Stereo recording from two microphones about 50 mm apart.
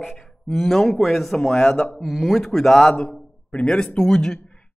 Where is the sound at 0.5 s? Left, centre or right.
Centre.